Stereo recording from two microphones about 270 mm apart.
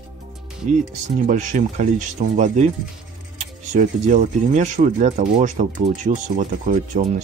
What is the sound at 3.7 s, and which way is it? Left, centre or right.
Speech, right.